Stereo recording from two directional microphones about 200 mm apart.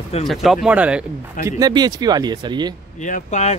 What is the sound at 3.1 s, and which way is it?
Speech, 35° left (ahead or behind).